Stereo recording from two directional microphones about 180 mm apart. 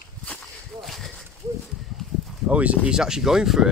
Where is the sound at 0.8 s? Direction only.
Centre (ahead or behind).